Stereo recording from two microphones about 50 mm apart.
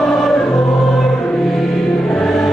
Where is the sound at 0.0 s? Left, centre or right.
Centre.